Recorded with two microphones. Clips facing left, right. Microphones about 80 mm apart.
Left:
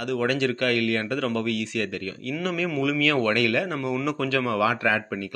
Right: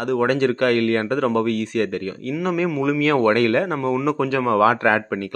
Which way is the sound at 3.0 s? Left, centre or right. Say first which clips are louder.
Right 7 dB; right.